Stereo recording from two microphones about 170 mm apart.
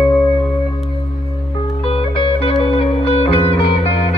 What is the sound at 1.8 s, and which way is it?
Music, 35° left (ahead or behind).